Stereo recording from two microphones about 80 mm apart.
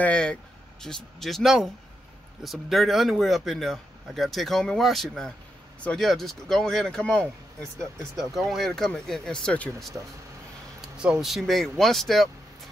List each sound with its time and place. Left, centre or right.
0.0 s speech: centre
8.2 s speech: centre
9.9 s speech: right
11.0 s speech: centre